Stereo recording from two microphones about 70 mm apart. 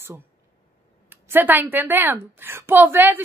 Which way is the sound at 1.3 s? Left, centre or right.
Right.